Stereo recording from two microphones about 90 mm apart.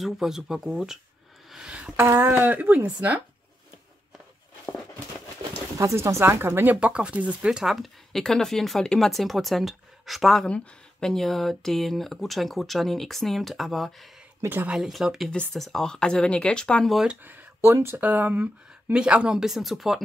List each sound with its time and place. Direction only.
0.0 s speech: 5° right (ahead or behind)
1.5 s a sound: 10° right (ahead or behind)
2.0 s speech: 25° right (ahead or behind)
5.8 s speech: 35° right (ahead or behind); by 13.9 s centre (ahead or behind)
14.4 s speech: 25° right (ahead or behind)
14.7 s speech: centre (ahead or behind)
16.9 s speech: 5° right (ahead or behind)
17.2 s a sound: 20° right (ahead or behind)
17.6 s speech: 30° right (ahead or behind); by 20.0 s 5° right (ahead or behind)